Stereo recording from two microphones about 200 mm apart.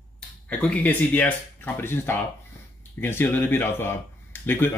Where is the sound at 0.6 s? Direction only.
5° left (ahead or behind).